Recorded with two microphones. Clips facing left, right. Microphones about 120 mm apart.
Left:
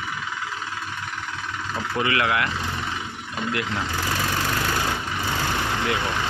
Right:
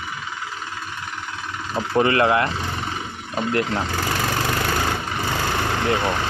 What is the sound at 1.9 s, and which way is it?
Speech, 40° right (ahead or behind).